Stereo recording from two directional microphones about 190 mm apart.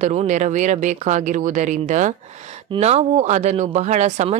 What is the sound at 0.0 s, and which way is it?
Speech, 40° right (ahead or behind).